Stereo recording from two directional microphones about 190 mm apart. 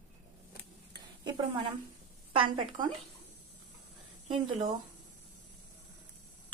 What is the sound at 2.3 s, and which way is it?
Speech, 25° right (ahead or behind).